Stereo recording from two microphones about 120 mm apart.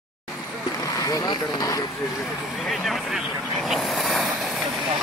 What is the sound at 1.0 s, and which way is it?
Speech, 30° left (ahead or behind).